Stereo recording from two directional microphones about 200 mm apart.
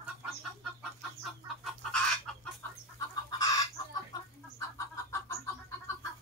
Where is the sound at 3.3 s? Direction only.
15° left (ahead or behind).